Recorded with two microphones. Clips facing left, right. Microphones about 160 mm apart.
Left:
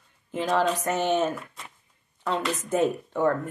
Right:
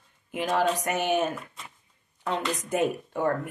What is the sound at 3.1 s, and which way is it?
Speech, 50° left (ahead or behind).